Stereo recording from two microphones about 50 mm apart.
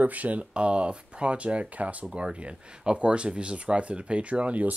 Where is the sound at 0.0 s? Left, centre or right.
Right.